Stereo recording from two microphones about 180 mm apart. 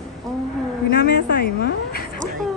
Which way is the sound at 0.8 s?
55° left (ahead or behind).